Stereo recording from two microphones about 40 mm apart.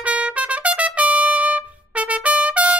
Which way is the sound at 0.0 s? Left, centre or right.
Right.